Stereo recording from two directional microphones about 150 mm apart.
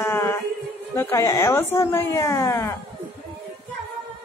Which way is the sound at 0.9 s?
20° left (ahead or behind).